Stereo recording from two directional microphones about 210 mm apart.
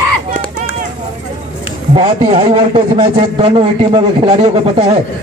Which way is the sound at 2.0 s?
35° right (ahead or behind).